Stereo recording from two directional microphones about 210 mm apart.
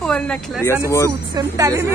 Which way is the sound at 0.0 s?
5° left (ahead or behind).